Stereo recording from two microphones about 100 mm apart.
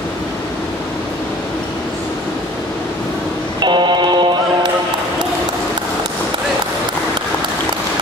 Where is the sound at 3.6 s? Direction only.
50° right (ahead or behind).